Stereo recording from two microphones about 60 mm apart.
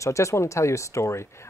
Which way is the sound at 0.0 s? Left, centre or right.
Left.